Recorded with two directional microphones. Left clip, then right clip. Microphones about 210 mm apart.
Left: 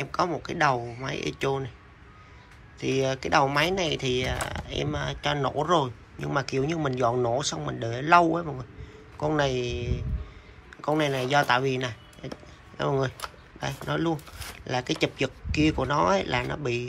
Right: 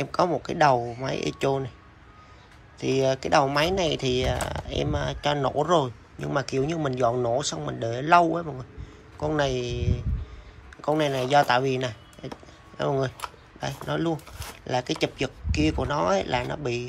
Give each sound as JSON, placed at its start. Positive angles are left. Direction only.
{"t": 0.0, "sound": "speech", "side_deg": -20}
{"t": 2.8, "sound": "speech", "side_deg": -15}